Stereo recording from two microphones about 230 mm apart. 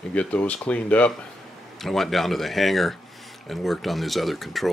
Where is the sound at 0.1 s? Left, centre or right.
Centre.